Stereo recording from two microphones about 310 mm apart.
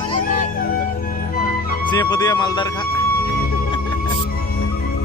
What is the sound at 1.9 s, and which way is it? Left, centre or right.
Speech, centre.